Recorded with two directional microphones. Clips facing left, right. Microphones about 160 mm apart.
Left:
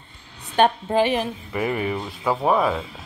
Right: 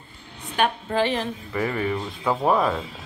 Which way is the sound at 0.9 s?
15° left (ahead or behind).